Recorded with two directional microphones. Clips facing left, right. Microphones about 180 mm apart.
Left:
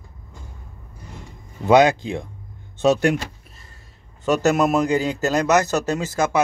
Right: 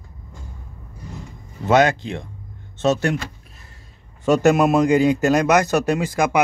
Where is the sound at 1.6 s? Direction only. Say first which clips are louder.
Left 2 dB; 15° left (ahead or behind).